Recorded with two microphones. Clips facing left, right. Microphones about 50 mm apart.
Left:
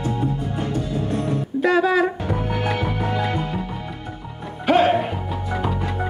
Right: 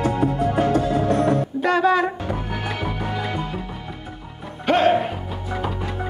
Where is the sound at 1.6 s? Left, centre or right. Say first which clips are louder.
Left 2 dB; centre.